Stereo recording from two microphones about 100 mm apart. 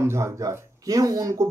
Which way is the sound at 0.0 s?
25° right (ahead or behind).